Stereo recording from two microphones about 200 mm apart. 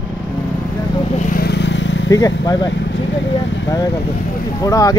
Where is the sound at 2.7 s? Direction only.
65° left (ahead or behind).